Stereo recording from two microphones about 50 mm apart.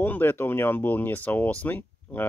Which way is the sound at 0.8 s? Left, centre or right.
Left.